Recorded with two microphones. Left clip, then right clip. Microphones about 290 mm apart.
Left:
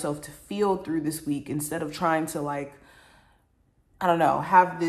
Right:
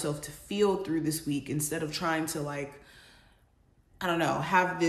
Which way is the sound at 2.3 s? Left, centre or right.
Centre.